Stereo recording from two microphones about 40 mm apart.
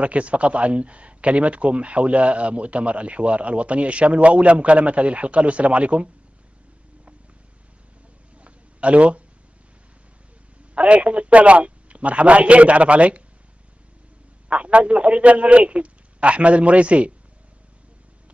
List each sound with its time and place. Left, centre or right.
0.0 s speech: right
8.4 s a sound: right
10.7 s speech: right
14.5 s speech: right